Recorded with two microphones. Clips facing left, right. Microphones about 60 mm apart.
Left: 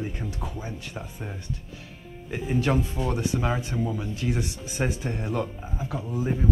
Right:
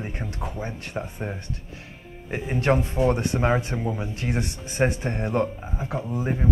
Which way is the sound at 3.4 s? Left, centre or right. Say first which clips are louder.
Right 4 dB; right.